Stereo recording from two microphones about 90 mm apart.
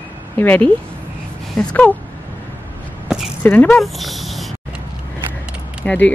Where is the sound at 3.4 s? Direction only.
25° left (ahead or behind).